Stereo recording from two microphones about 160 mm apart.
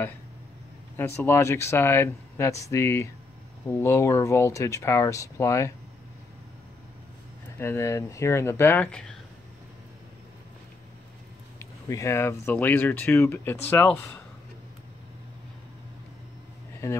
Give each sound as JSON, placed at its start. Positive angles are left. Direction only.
{"t": 0.9, "sound": "speech", "side_deg": 15}
{"t": 7.5, "sound": "speech", "side_deg": 15}
{"t": 11.9, "sound": "speech", "side_deg": 20}